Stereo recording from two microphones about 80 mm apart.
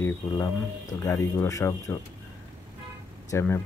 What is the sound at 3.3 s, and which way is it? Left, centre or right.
Speech, left.